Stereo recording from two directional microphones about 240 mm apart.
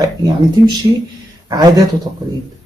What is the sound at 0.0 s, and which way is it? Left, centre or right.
Speech, centre.